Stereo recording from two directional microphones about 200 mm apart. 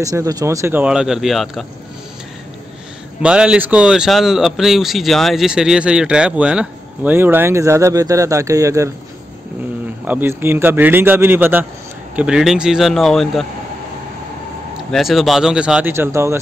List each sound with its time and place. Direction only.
0.0 s speech: 15° right (ahead or behind); by 1.7 s centre (ahead or behind)
3.2 s speech: 5° right (ahead or behind)
10.0 s speech: 10° right (ahead or behind)
14.9 s speech: centre (ahead or behind)